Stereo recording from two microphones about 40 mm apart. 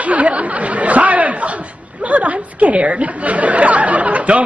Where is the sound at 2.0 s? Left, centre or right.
Right.